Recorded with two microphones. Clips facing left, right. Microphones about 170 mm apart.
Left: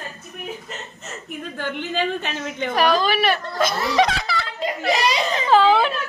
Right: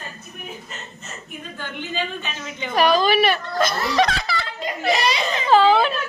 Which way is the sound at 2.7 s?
15° right (ahead or behind).